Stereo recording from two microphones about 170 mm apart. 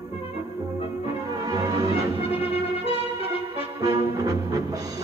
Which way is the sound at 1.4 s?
20° right (ahead or behind).